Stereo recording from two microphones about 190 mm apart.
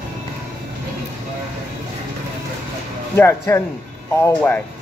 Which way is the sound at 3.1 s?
10° left (ahead or behind).